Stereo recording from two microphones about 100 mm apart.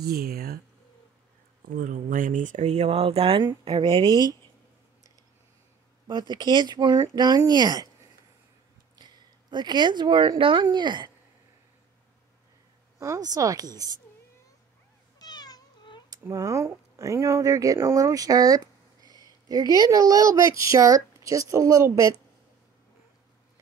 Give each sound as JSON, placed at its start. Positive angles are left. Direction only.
{"t": 2.6, "sound": "speech", "side_deg": -90}
{"t": 3.4, "sound": "speech", "side_deg": -50}
{"t": 6.0, "sound": "speech", "side_deg": -50}
{"t": 8.9, "sound": "speech", "side_deg": -45}
{"t": 13.0, "sound": "a woman's voice", "side_deg": -35}
{"t": 15.1, "sound": "cat", "side_deg": 45}
{"t": 16.1, "sound": "a woman's voice", "side_deg": -35}